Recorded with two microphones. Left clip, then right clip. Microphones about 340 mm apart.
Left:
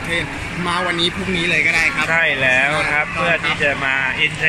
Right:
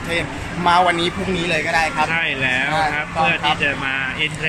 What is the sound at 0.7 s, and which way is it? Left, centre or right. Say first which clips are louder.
Speech: right 4 dB; right.